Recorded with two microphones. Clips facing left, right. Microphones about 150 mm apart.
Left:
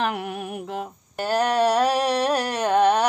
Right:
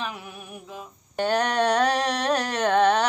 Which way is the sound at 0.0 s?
70° left (ahead or behind).